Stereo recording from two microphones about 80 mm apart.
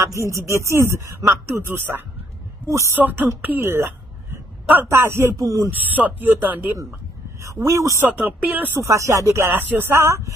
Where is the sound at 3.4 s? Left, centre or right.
Right.